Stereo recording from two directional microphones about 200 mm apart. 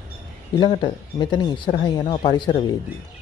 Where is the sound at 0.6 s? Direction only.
20° left (ahead or behind).